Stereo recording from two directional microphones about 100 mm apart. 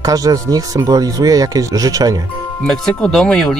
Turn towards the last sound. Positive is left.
turn(degrees=5)  # may be behind; listen again after turning